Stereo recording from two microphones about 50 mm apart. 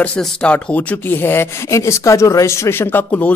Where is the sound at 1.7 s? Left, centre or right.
Left.